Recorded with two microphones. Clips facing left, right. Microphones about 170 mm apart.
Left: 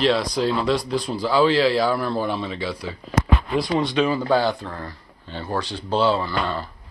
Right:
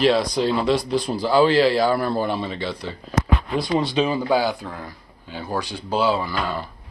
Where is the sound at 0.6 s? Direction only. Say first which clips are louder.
Right 2 dB; centre (ahead or behind).